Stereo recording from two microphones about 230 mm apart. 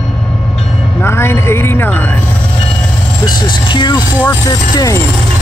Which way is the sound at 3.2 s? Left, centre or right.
Centre.